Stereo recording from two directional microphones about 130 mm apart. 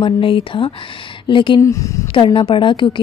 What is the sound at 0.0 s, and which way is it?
A woman's voice, 40° left (ahead or behind).